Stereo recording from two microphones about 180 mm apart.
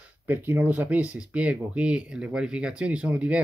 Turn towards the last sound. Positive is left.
turn(degrees=-5)  # may be behind; listen again after turning